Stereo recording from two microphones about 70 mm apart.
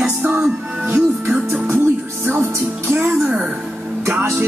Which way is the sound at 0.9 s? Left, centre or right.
Right.